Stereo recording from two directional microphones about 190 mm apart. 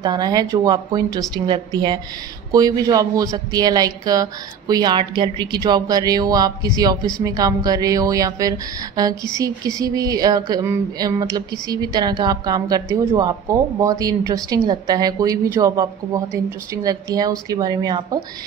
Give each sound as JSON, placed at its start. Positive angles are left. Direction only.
{"t": 0.0, "sound": "a woman's voice", "side_deg": -20}